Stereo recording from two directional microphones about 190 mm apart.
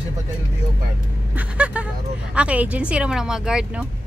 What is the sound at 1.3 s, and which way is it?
Speech, 5° right (ahead or behind).